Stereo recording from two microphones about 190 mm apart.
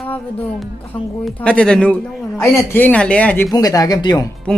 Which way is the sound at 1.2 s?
5° left (ahead or behind).